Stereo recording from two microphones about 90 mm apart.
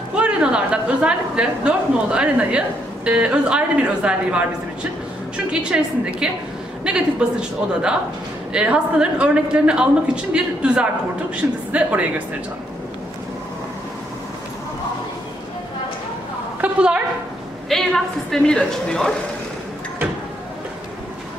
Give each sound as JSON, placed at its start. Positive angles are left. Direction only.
{"t": 0.1, "sound": "a woman's voice", "side_deg": -10}
{"t": 5.5, "sound": "a woman's voice", "side_deg": -10}
{"t": 16.6, "sound": "a woman's voice", "side_deg": -10}
{"t": 17.6, "sound": "a woman's voice", "side_deg": 5}